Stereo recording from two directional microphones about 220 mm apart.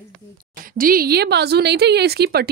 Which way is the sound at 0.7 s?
40° right (ahead or behind).